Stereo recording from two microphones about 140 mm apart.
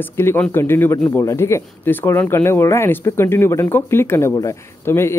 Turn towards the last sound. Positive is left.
turn(degrees=20)  # may be behind; listen again after turning